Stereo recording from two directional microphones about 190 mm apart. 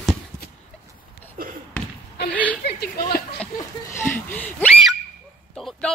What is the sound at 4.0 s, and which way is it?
Speech, 10° left (ahead or behind).